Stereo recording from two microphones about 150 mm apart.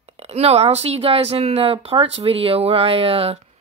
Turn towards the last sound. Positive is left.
turn(degrees=-40)  # may be behind; listen again after turning